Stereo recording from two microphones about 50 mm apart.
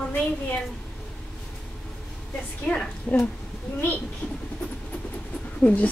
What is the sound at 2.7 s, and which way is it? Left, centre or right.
Speech, left.